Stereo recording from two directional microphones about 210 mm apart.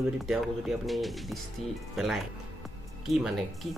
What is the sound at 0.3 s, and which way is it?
Speech, centre (ahead or behind).